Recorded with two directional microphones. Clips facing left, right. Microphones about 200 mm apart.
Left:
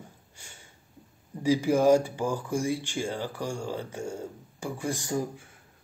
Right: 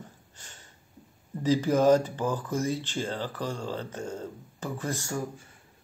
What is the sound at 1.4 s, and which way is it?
Speech, 10° left (ahead or behind).